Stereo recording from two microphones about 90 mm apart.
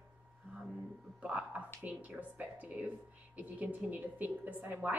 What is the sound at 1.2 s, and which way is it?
A woman's voice, 15° right (ahead or behind).